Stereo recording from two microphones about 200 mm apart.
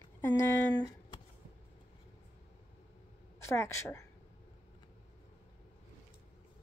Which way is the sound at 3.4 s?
15° left (ahead or behind).